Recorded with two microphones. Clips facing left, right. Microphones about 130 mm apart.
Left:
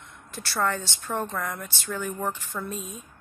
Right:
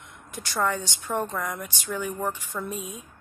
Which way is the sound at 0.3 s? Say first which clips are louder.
Right 1 dB; 15° right (ahead or behind).